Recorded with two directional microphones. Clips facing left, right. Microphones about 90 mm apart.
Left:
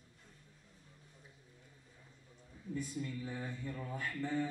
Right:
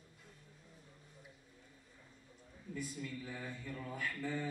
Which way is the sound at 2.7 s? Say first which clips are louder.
Left 3 dB; 30° left (ahead or behind).